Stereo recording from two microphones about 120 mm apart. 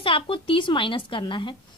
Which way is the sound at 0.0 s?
45° left (ahead or behind).